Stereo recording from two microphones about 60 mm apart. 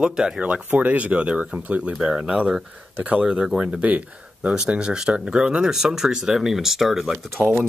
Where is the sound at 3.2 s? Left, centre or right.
Centre.